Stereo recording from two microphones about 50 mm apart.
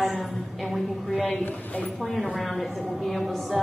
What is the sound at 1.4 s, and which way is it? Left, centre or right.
Speech, left.